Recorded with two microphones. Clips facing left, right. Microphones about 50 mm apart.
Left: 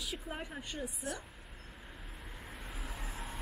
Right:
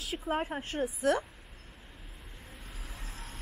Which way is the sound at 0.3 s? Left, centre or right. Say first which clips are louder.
Right 11 dB; right.